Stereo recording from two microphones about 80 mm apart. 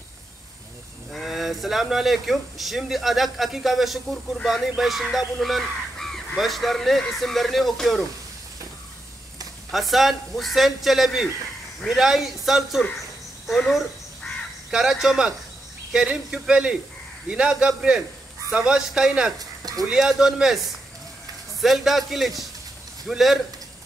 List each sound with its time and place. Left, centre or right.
1.1 s speech: centre
9.7 s speech: centre
13.5 s crow: centre
15.9 s speech: centre
19.6 s a sound: right
19.9 s speech: centre